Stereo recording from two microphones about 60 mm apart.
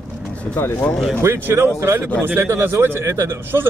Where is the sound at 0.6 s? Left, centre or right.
Left.